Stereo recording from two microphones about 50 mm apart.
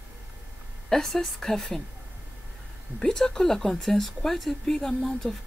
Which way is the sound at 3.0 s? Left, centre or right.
Centre.